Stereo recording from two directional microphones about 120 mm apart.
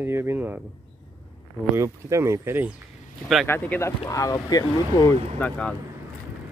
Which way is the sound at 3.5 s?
15° left (ahead or behind).